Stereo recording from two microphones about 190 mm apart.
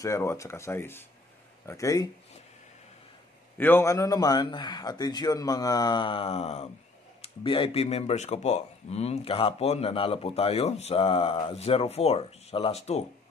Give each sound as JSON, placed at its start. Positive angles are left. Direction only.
{"t": 0.0, "sound": "speech", "side_deg": 15}
{"t": 3.5, "sound": "a man's voice", "side_deg": 10}